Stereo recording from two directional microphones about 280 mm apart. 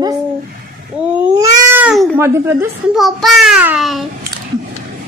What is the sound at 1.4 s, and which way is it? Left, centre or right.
Speech, centre.